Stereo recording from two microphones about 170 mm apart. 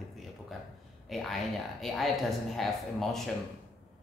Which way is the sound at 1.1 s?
Centre (ahead or behind).